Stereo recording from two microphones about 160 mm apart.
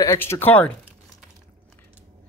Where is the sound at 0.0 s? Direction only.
20° left (ahead or behind).